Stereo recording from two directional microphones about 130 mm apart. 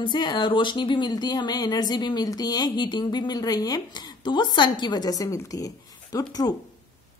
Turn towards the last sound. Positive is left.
turn(degrees=30)  # may be behind; listen again after turning